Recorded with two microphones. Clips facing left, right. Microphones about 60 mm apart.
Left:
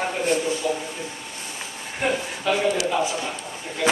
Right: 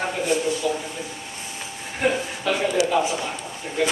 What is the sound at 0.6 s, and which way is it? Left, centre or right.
Speech, left.